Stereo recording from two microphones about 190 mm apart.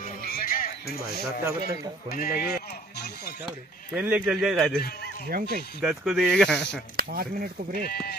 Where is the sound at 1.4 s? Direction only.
15° right (ahead or behind).